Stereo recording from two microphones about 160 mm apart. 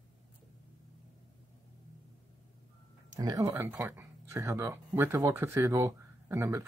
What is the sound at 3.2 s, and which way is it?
Speech, 20° right (ahead or behind).